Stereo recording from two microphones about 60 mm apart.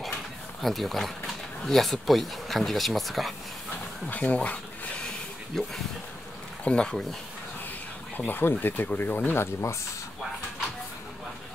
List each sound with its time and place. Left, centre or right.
0.6 s speech: centre
4.1 s a sound: left
5.5 s speech: centre
8.3 s speech: left